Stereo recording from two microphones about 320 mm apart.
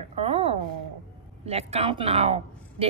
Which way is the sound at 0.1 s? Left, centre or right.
Centre.